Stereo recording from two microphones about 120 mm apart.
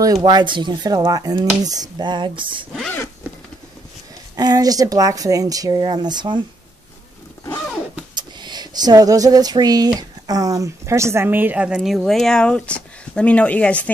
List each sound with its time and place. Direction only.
0.0 s speech: 35° right (ahead or behind)
4.4 s speech: 30° right (ahead or behind)
8.1 s a sound: 35° right (ahead or behind)
9.9 s a woman's voice: 30° right (ahead or behind); by 13.8 s 10° left (ahead or behind)